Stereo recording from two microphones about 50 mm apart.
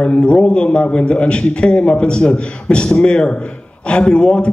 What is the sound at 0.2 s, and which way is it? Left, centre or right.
A man's voice, left.